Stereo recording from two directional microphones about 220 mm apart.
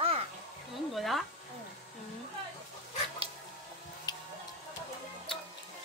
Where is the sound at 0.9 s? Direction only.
Centre (ahead or behind).